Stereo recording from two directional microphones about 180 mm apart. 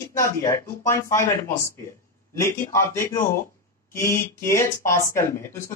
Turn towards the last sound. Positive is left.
turn(degrees=15)  # may be behind; listen again after turning